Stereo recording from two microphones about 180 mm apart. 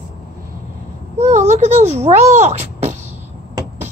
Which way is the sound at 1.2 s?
40° right (ahead or behind).